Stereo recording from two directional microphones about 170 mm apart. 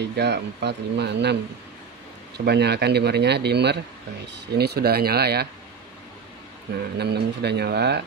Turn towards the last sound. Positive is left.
turn(degrees=-75)  # may be behind; listen again after turning